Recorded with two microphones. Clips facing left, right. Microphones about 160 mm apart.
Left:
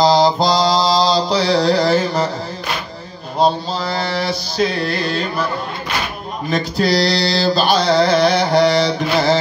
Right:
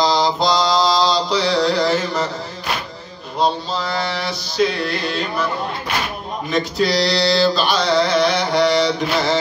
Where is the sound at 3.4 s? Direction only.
35° left (ahead or behind).